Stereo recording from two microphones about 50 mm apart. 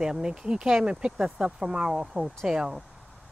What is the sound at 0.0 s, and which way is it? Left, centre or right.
Speech, centre.